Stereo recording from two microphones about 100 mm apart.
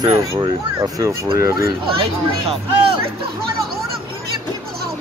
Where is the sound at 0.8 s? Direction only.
35° right (ahead or behind).